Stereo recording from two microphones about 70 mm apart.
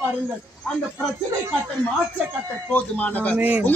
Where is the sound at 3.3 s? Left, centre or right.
Right.